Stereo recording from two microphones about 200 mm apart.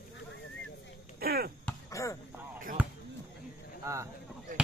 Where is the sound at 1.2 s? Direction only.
50° right (ahead or behind).